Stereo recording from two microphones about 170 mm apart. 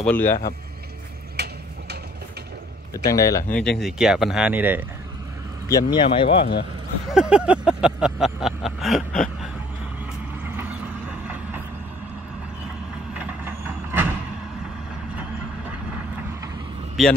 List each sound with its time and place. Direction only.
0.0 s speech: 10° left (ahead or behind)
1.3 s a sound: 75° right (ahead or behind)
2.9 s speech: 20° left (ahead or behind)
3.5 s vehicle: 5° left (ahead or behind)
5.7 s speech: 25° left (ahead or behind)
7.1 s vehicle: 5° right (ahead or behind)
10.4 s vehicle: 10° right (ahead or behind)
17.0 s vehicle: centre (ahead or behind)